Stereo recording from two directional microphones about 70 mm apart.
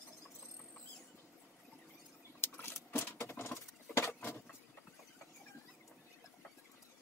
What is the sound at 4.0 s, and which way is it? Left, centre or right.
Vehicle, left.